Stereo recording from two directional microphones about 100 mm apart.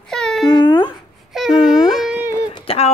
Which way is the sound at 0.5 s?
55° left (ahead or behind).